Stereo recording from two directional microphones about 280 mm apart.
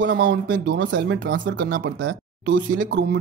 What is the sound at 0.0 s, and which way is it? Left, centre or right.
A woman's voice, right.